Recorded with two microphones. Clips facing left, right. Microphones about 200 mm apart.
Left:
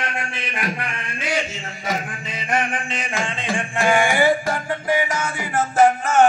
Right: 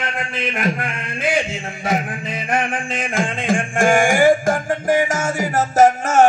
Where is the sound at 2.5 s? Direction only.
55° right (ahead or behind).